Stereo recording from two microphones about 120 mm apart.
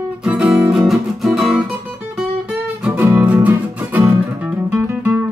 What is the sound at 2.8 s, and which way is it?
Music, 15° right (ahead or behind).